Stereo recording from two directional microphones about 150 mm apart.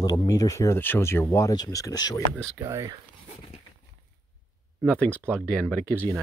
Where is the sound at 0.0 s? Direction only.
25° left (ahead or behind).